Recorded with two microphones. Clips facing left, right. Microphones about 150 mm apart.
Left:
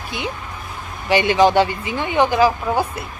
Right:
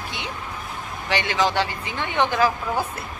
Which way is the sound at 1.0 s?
15° left (ahead or behind).